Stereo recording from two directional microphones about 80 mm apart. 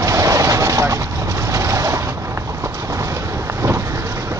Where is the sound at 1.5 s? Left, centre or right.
Right.